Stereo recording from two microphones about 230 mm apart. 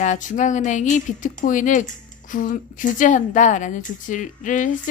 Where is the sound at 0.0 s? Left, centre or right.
Left.